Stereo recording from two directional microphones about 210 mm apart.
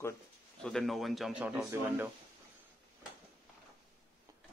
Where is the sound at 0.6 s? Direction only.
5° left (ahead or behind).